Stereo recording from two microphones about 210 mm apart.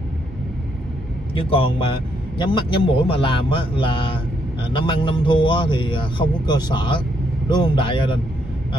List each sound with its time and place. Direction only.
1.3 s a man's voice: 25° left (ahead or behind)